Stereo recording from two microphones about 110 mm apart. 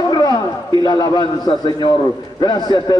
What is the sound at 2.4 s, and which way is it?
Speech, 40° left (ahead or behind).